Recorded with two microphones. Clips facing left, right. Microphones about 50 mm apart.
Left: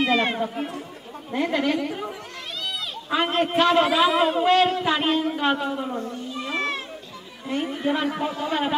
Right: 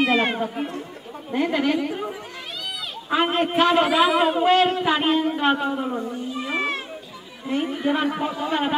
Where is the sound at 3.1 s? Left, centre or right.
Centre.